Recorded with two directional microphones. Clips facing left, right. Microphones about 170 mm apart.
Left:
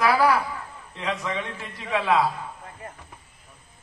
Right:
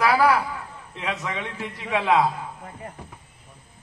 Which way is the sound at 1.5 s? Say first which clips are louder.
Right 1 dB; 15° right (ahead or behind).